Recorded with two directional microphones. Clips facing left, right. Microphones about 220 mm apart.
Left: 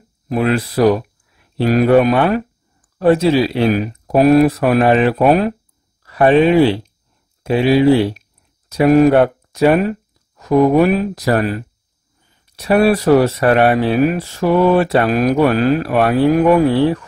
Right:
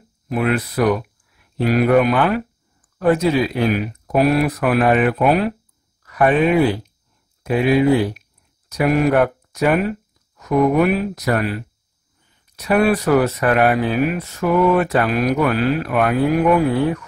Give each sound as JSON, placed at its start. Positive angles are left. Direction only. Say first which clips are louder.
{"t": 0.3, "sound": "speech", "louder": "left 3 dB", "side_deg": 30}
{"t": 1.6, "sound": "speech", "louder": "left 3 dB", "side_deg": 40}
{"t": 1.9, "sound": "speech", "louder": "left 4 dB", "side_deg": 30}
{"t": 4.5, "sound": "speech", "louder": "left 3 dB", "side_deg": 30}
{"t": 8.6, "sound": "a sound", "louder": "left 6 dB", "side_deg": 25}
{"t": 9.1, "sound": "speech", "louder": "left 4 dB", "side_deg": 30}